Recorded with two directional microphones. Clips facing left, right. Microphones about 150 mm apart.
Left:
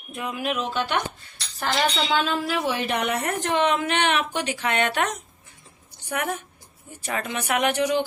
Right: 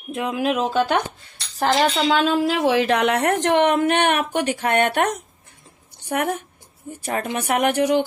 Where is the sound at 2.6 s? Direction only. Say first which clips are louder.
Right 7 dB; 90° right.